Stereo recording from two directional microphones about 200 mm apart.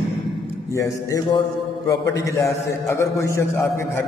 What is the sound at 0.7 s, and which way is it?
A man's voice, 15° left (ahead or behind).